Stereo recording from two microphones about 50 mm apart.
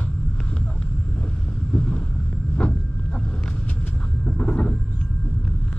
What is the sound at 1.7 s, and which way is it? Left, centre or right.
Vehicle, centre.